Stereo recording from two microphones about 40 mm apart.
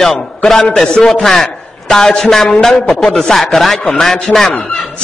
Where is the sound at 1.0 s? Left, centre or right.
Centre.